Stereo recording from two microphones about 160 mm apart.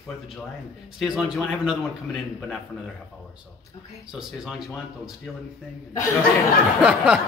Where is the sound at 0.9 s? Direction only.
5° right (ahead or behind).